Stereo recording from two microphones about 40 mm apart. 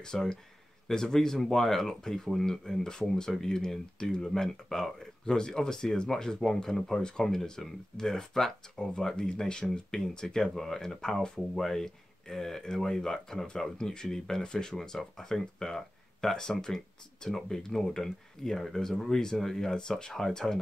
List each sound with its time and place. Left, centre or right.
0.0 s speech: centre